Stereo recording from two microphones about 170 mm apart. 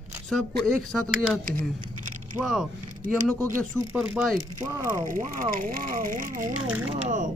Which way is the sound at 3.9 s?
10° right (ahead or behind).